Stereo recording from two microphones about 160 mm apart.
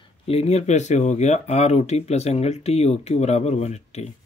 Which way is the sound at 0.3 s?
40° left (ahead or behind).